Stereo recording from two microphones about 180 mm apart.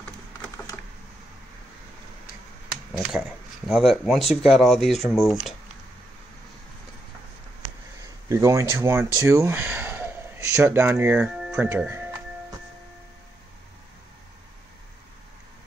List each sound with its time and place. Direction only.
2.9 s speech: 5° right (ahead or behind)
8.3 s speech: 20° right (ahead or behind)